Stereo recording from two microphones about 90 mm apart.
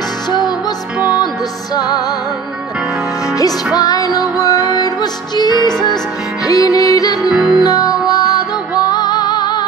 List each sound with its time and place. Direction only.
1.8 s music: 45° left (ahead or behind)
3.7 s music: 45° left (ahead or behind)
6.4 s music: 40° left (ahead or behind)
7.2 s music: centre (ahead or behind)
7.6 s music: 45° left (ahead or behind)